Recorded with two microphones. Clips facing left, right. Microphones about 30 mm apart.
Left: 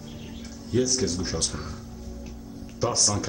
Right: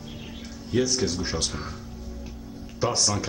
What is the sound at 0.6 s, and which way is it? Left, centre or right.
Speech, right.